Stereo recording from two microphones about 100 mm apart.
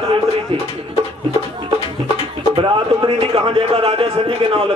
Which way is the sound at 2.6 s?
55° right (ahead or behind).